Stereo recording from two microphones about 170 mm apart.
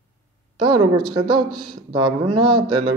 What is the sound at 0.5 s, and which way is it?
Speech, 25° right (ahead or behind).